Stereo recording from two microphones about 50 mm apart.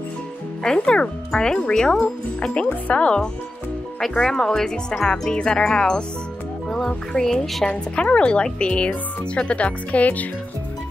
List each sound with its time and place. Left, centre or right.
0.7 s a woman's voice: centre
4.2 s music: centre
7.2 s music: centre
7.6 s a woman's voice: left